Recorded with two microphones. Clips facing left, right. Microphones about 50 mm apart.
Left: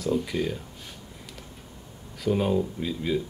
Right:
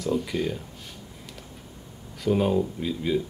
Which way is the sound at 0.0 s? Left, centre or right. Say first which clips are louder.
Even; centre.